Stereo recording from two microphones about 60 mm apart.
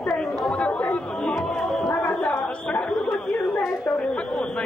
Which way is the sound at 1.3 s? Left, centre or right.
Centre.